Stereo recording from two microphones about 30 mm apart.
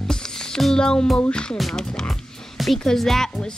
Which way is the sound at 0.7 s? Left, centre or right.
Left.